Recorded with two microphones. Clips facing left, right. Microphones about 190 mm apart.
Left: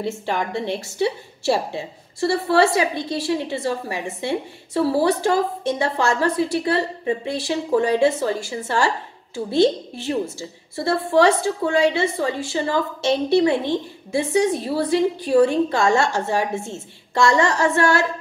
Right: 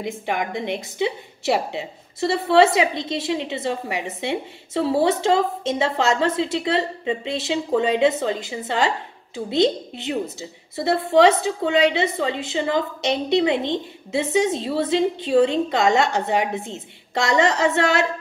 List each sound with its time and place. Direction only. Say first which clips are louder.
0.0 s a woman's voice: left 1 dB; 15° right (ahead or behind)